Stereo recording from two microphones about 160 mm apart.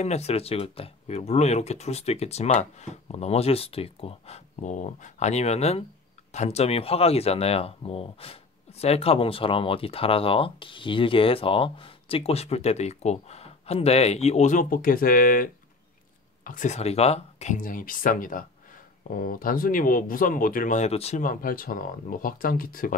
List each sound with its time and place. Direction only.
0.0 s speech: 40° left (ahead or behind)
21.2 s speech: 60° left (ahead or behind)